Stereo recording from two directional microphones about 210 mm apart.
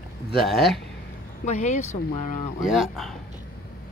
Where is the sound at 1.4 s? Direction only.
35° left (ahead or behind).